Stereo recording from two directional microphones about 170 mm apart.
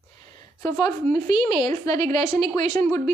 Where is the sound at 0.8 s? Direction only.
25° left (ahead or behind).